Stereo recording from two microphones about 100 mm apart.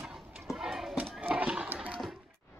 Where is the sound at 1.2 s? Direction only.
15° right (ahead or behind).